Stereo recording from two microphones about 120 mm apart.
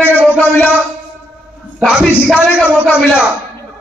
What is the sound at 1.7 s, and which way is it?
Music, 10° right (ahead or behind).